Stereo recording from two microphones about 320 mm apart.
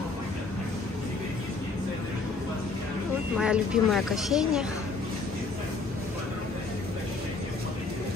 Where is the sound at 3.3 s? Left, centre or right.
Centre.